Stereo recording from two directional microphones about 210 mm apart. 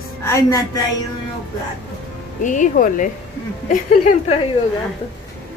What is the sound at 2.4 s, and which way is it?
Speech, 35° left (ahead or behind).